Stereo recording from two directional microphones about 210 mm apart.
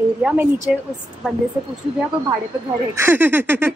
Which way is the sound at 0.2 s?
5° right (ahead or behind).